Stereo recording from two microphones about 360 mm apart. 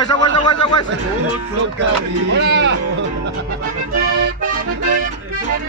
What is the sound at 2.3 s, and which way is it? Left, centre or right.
Speech, right.